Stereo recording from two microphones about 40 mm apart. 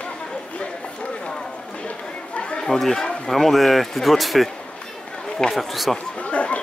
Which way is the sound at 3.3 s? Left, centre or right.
Centre.